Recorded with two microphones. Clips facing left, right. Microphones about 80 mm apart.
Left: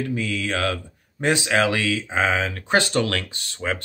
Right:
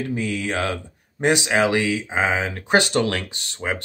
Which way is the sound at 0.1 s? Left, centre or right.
Right.